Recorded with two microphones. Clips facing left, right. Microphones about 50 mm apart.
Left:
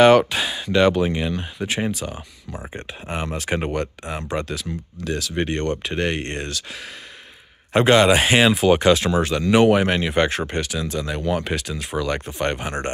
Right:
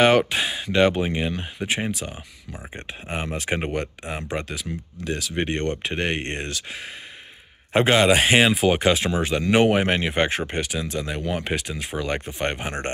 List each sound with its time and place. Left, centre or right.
0.0 s speech: centre
1.9 s a man's voice: centre; by 8.0 s right
8.0 s speech: centre
11.9 s speech: left
12.3 s speech: right